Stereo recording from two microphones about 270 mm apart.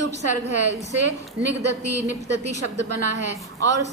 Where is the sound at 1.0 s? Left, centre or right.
Right.